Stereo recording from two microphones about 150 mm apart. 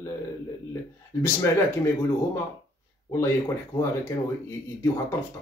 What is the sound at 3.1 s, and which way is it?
Speech, 20° left (ahead or behind).